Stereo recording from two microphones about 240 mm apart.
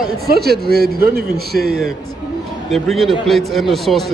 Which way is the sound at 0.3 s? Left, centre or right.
Right.